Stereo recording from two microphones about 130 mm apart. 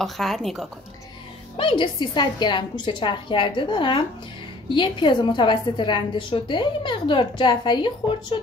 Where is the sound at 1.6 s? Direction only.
40° left (ahead or behind).